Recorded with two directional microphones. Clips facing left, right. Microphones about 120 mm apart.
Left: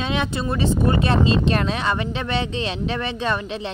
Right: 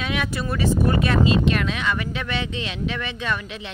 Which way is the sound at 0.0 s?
25° left (ahead or behind).